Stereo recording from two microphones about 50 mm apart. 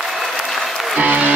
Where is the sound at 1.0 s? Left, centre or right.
Right.